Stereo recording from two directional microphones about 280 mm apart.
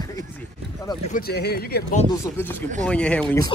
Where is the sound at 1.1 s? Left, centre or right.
Left.